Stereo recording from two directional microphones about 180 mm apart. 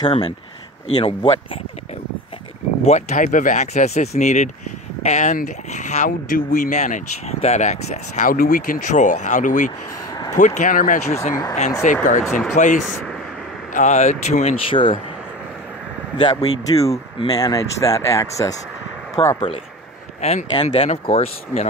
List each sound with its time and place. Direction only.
0.0 s speech: 25° left (ahead or behind)
2.8 s speech: 35° left (ahead or behind)
12.2 s speech: centre (ahead or behind)
12.5 s speech: 45° left (ahead or behind); by 15.0 s 30° left (ahead or behind)
16.2 s speech: 20° left (ahead or behind)
20.2 s speech: 35° left (ahead or behind)